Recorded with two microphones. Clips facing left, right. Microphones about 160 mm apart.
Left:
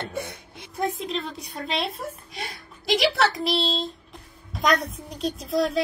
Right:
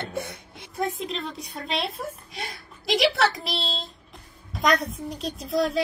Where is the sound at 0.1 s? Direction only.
Centre (ahead or behind).